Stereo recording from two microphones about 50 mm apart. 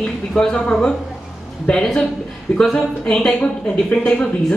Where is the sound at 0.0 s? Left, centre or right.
Centre.